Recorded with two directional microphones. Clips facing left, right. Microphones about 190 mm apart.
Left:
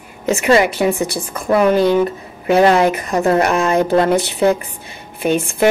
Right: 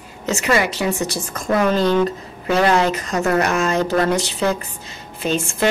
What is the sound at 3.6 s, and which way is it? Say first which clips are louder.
Speech: left 4 dB; 15° left (ahead or behind).